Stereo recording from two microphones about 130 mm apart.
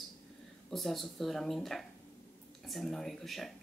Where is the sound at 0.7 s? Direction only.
Centre (ahead or behind).